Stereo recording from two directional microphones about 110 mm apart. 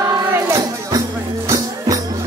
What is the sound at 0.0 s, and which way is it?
Music, 30° right (ahead or behind).